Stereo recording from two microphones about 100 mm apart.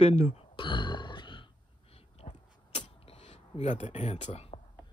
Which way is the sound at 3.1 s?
85° left.